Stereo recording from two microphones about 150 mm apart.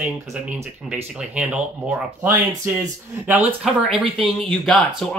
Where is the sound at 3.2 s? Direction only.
10° right (ahead or behind).